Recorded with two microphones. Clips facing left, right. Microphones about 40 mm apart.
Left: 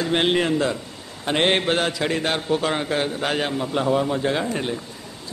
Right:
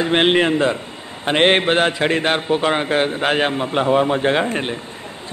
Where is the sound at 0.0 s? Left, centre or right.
Right.